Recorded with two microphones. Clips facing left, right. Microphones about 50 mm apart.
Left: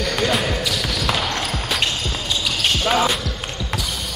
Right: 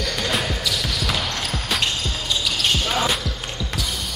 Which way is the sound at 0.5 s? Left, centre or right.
Centre.